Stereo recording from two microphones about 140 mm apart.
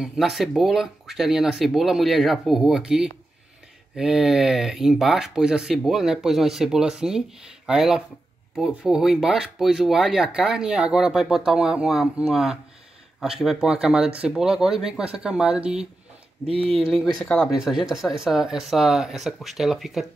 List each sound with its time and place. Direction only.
0.0 s speech: 5° right (ahead or behind)
16.4 s speech: 40° right (ahead or behind)
17.2 s speech: 5° left (ahead or behind)